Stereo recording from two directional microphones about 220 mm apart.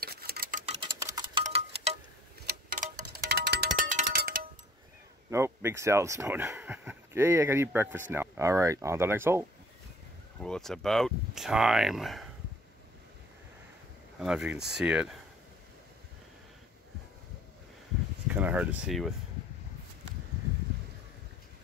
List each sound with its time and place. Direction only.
0.0 s clock: 45° right (ahead or behind)
0.7 s tick-tock: 20° right (ahead or behind)
1.4 s wind chime: 30° right (ahead or behind)
2.4 s wind chime: 40° right (ahead or behind)
3.9 s a sound: 40° right (ahead or behind)
5.3 s speech: 10° right (ahead or behind)
10.4 s speech: centre (ahead or behind)
14.2 s speech: 5° right (ahead or behind)
18.3 s speech: 5° right (ahead or behind)